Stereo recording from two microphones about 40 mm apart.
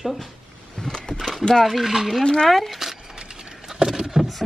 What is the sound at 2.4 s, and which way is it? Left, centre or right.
Speech, centre.